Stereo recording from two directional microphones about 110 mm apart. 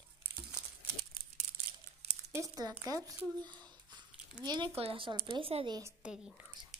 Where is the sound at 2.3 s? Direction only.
25° right (ahead or behind); by 4.7 s 40° right (ahead or behind).